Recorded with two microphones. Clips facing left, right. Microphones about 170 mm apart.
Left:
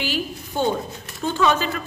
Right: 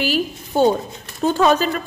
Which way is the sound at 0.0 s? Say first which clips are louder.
Right 5 dB; 40° right (ahead or behind).